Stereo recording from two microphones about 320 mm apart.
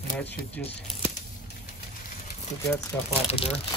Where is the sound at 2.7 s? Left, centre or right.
Centre.